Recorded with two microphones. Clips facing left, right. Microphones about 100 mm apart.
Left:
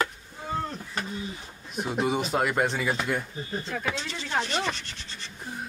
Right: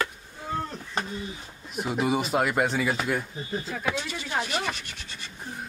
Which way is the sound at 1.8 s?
5° right (ahead or behind).